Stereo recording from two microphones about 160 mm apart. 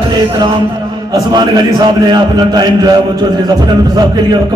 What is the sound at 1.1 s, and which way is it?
A man's voice, 20° right (ahead or behind).